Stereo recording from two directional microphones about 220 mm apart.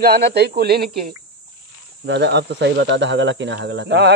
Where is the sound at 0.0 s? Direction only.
50° right (ahead or behind).